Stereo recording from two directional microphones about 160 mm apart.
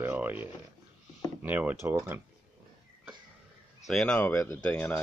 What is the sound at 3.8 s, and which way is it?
Speech, 5° left (ahead or behind).